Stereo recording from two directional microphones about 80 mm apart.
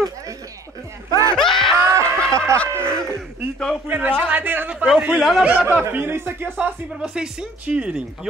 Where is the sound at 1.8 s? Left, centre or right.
Right.